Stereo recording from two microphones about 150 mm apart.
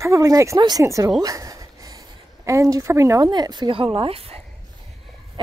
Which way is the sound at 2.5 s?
20° right (ahead or behind).